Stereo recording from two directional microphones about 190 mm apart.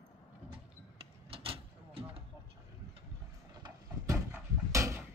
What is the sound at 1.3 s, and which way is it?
Vehicle, 30° right (ahead or behind).